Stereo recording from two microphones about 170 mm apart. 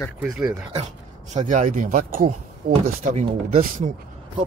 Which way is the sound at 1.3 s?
45° right (ahead or behind).